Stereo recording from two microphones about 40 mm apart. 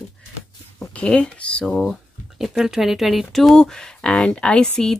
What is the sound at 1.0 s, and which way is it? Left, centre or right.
Speech, left.